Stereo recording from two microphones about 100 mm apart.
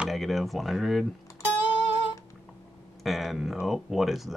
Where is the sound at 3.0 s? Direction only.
Centre (ahead or behind).